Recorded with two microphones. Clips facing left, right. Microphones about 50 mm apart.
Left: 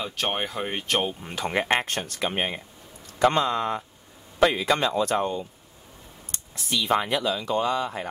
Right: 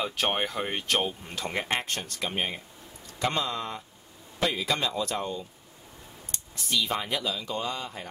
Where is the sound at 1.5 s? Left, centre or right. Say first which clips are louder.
Left 6 dB; left.